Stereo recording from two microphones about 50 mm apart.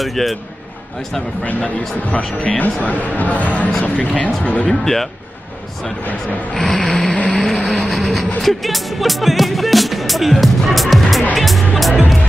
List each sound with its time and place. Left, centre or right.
0.0 s speech: centre
1.4 s a man's voice: left
4.6 s speech: centre
6.6 s speech: centre
7.2 s vehicle: left
7.4 s speech: centre
7.8 s a sound: centre
8.4 s speech: centre
11.3 s music: centre